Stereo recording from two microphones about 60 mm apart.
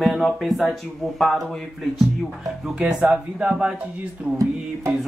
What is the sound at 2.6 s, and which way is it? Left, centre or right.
Speech, centre.